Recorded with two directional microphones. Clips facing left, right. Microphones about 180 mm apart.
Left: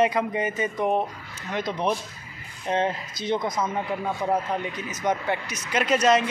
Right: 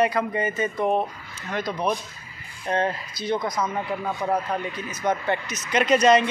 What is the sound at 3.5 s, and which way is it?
A man's voice, 5° left (ahead or behind).